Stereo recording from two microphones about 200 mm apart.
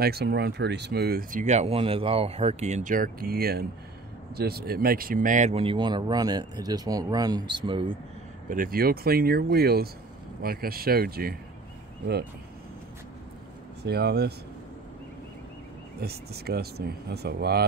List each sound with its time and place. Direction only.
0.0 s speech: 55° right (ahead or behind); by 8.0 s 25° right (ahead or behind)
8.5 s speech: 45° right (ahead or behind)
13.8 s speech: 55° right (ahead or behind)
16.0 s speech: 50° right (ahead or behind)